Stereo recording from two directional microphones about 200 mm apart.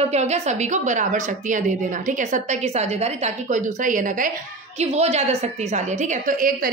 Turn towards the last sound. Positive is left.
turn(degrees=-45)  # may be behind; listen again after turning